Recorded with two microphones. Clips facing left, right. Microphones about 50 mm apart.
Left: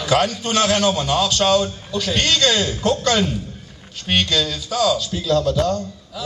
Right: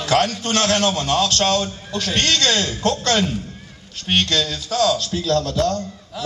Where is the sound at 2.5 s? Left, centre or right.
Centre.